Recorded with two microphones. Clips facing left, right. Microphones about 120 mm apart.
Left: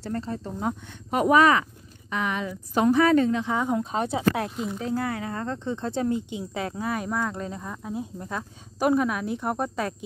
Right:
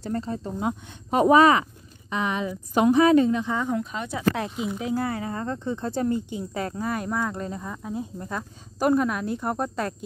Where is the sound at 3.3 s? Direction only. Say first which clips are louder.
Right 1 dB; 5° right (ahead or behind).